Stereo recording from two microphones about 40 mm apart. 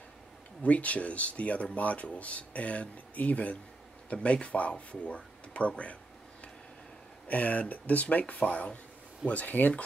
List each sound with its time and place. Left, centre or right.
0.6 s speech: left
7.2 s speech: left